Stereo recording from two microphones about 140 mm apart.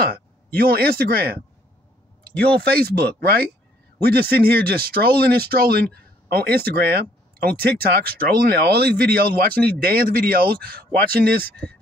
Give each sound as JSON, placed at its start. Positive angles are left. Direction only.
{"t": 0.6, "sound": "speech", "side_deg": -90}
{"t": 2.4, "sound": "speech", "side_deg": -90}